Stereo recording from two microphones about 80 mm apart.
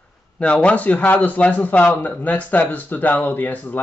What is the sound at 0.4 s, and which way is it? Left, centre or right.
Speech, centre.